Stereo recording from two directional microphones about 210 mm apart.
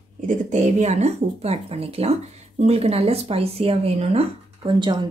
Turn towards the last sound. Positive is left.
turn(degrees=-20)  # may be behind; listen again after turning